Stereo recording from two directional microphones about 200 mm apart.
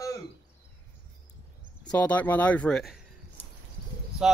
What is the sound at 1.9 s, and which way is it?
Speech, 10° left (ahead or behind).